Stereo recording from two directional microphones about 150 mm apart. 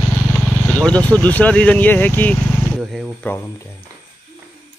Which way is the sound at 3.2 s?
15° left (ahead or behind).